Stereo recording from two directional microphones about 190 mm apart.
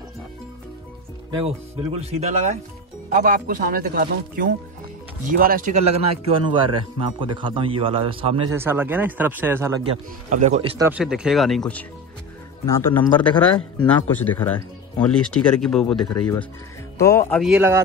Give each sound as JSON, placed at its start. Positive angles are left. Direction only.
{"t": 1.4, "sound": "a man's voice", "side_deg": -30}
{"t": 8.5, "sound": "speech", "side_deg": -10}
{"t": 10.3, "sound": "speech", "side_deg": -40}
{"t": 10.8, "sound": "speech", "side_deg": -5}
{"t": 12.6, "sound": "speech", "side_deg": 15}
{"t": 17.0, "sound": "speech", "side_deg": 15}
{"t": 17.4, "sound": "speech", "side_deg": -10}